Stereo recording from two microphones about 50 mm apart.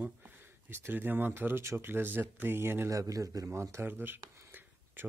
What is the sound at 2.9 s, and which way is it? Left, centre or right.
A man's voice, right.